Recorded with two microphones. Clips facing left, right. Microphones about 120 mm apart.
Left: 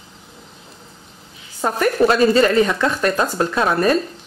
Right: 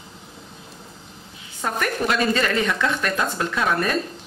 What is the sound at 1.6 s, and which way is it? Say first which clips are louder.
Speech: left 8 dB; 35° left (ahead or behind).